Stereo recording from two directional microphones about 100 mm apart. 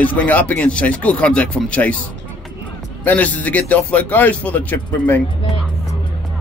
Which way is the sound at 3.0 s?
15° left (ahead or behind).